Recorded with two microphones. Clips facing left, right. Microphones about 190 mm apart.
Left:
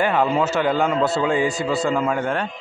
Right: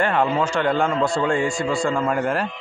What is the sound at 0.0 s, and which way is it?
Speech, 5° left (ahead or behind).